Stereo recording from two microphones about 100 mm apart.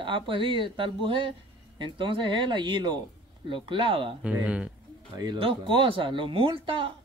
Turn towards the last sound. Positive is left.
turn(degrees=-60)  # may be behind; listen again after turning